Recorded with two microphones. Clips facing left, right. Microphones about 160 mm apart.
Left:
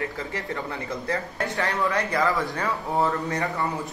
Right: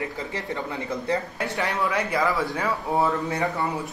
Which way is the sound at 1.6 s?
10° right (ahead or behind).